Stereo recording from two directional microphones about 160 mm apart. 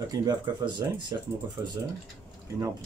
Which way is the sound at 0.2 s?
25° right (ahead or behind).